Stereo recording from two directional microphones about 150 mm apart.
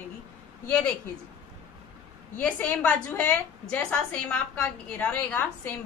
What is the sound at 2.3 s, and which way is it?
A woman's voice, 10° left (ahead or behind).